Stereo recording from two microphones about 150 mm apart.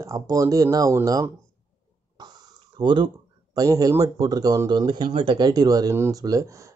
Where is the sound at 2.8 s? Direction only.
30° right (ahead or behind).